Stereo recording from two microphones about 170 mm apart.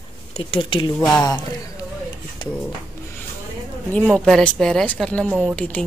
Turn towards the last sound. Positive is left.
turn(degrees=5)  # may be behind; listen again after turning